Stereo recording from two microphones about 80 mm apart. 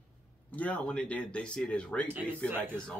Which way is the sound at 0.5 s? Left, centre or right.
Centre.